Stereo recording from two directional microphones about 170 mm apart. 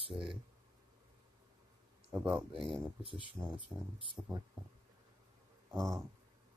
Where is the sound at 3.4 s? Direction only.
15° right (ahead or behind).